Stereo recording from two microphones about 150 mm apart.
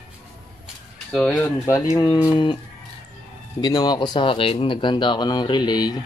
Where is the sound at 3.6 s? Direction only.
25° left (ahead or behind).